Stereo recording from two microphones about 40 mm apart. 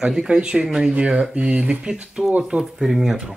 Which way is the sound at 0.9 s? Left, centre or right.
Right.